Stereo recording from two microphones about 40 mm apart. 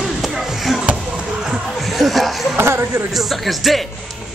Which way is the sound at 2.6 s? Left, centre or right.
Right.